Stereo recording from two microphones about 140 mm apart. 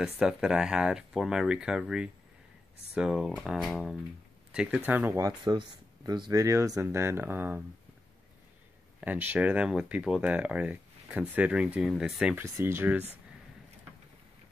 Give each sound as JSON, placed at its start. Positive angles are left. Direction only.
{"t": 0.0, "sound": "speech", "side_deg": -5}
{"t": 9.0, "sound": "speech", "side_deg": -10}
{"t": 12.5, "sound": "speech", "side_deg": -15}